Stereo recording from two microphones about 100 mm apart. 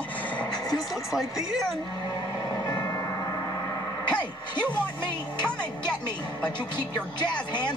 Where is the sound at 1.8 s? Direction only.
45° left (ahead or behind).